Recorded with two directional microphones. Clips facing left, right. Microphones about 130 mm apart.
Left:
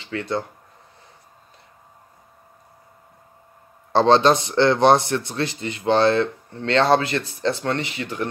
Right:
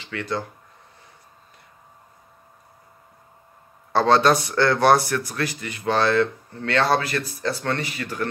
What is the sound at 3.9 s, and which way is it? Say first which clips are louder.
Speech: left 2 dB; 25° left (ahead or behind).